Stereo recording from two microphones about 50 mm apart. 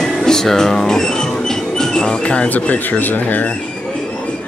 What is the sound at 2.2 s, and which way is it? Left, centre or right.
Speech, left.